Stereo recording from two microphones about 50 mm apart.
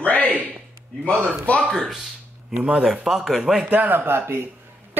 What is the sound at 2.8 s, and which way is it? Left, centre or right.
Speech, centre.